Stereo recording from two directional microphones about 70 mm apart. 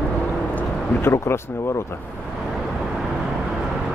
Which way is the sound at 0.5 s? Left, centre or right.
Left.